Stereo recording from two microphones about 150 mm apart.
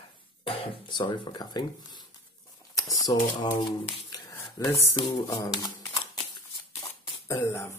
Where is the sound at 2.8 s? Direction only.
25° left (ahead or behind).